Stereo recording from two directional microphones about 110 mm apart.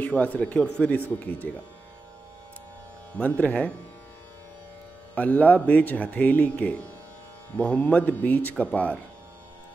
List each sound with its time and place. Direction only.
0.0 s speech: 15° left (ahead or behind)
3.2 s speech: 15° left (ahead or behind)
5.1 s speech: 15° left (ahead or behind)